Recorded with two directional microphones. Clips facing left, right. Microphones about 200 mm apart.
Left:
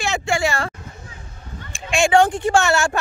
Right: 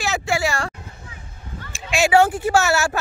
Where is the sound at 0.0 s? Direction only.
Centre (ahead or behind).